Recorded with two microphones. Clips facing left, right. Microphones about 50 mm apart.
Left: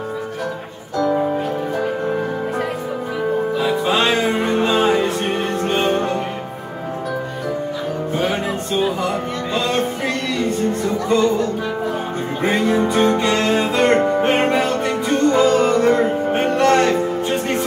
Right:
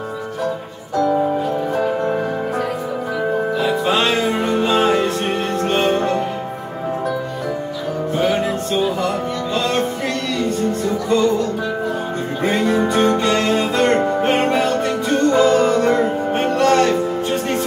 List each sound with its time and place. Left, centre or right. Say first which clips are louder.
3.8 s music: left 1 dB; centre
4.6 s music: right 1 dB; centre
8.2 s music: right 4 dB; centre
10.9 s music: even; left
12.4 s music: even; centre